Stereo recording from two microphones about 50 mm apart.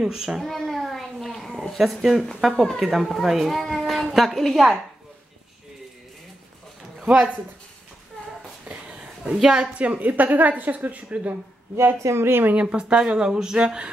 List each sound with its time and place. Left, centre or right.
0.1 s a child's voice: centre
0.5 s a child's voice: centre
1.8 s a child's voice: centre
2.5 s speech: centre
2.8 s a woman's voice: centre
7.1 s speech: right
8.6 s a sound: centre
9.4 s speech: centre
9.8 s a woman's voice: right
12.0 s a woman's voice: right
12.5 s speech: right